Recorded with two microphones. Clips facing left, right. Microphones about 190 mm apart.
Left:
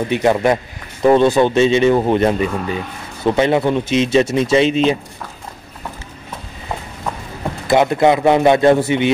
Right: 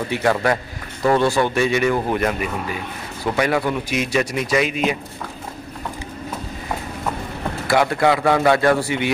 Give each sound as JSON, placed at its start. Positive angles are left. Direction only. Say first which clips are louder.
{"t": 0.1, "sound": "a man's voice", "louder": "left 4 dB", "side_deg": 20}
{"t": 7.6, "sound": "a man's voice", "louder": "left 4 dB", "side_deg": 20}